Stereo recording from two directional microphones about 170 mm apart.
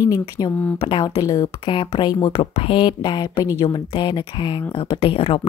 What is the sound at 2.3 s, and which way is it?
Speech, 35° left (ahead or behind).